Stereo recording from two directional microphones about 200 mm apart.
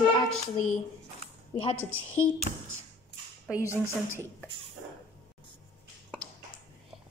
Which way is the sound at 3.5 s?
15° left (ahead or behind).